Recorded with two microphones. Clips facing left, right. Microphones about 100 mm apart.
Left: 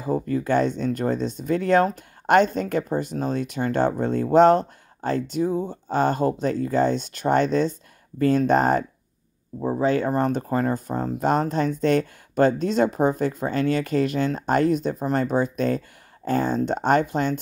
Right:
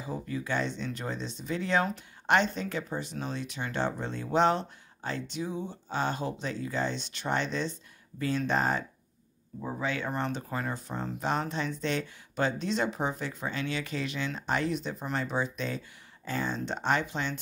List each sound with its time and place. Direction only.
0.0 s speech: 50° left (ahead or behind)
9.6 s speech: 40° left (ahead or behind)